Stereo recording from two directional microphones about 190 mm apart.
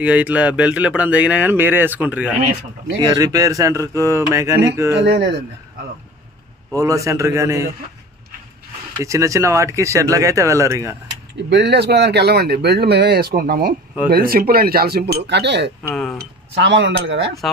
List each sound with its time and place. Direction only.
0.0 s speech: 5° right (ahead or behind)
3.0 s speech: 20° right (ahead or behind)
5.0 s speech: 60° right (ahead or behind)
6.8 s speech: 15° right (ahead or behind)
9.0 s speech: 15° right (ahead or behind)
11.5 s speech: 60° right (ahead or behind)
15.8 s speech: 5° left (ahead or behind)
16.5 s speech: 65° right (ahead or behind)